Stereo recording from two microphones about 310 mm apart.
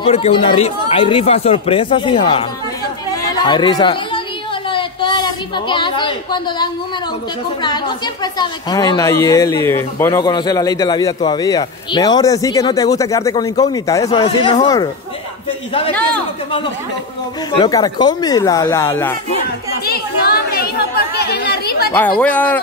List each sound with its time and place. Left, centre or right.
0.0 s a woman's voice: centre
17.6 s a woman's voice: centre
19.9 s chatter: left
21.9 s speech: centre